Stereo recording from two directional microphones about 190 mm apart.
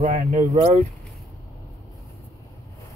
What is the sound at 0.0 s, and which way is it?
Speech, 35° right (ahead or behind).